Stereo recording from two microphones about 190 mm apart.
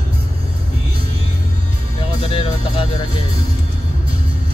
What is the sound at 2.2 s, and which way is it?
Music, 30° left (ahead or behind).